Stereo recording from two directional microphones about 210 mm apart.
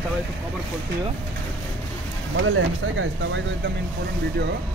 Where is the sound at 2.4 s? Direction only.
65° right (ahead or behind).